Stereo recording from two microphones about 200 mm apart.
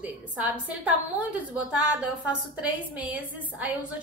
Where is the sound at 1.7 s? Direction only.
5° right (ahead or behind).